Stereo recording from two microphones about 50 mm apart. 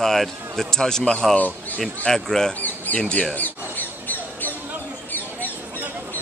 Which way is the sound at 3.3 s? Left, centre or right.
Left.